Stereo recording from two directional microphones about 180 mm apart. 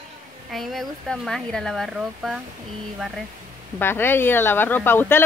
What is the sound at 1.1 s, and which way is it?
Speech, 5° left (ahead or behind).